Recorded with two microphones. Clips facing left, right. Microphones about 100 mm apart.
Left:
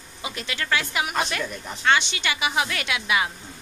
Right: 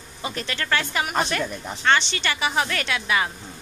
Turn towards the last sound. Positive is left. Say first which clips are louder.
# right 1 dB
turn(degrees=10)  # may be behind; listen again after turning